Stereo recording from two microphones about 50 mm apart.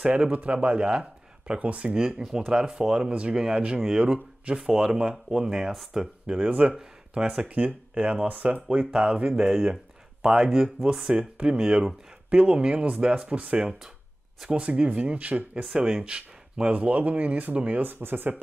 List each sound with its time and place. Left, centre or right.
0.0 s speech: right
2.0 s speech: centre
6.7 s speech: centre
7.4 s speech: right
12.3 s speech: right
13.1 s speech: right
15.6 s speech: centre
16.7 s speech: right
17.8 s speech: right